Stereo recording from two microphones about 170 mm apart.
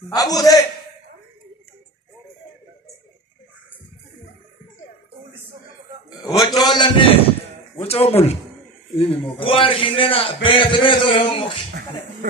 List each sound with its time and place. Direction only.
0.1 s a man's voice: 20° left (ahead or behind)
6.0 s a man's voice: 25° left (ahead or behind)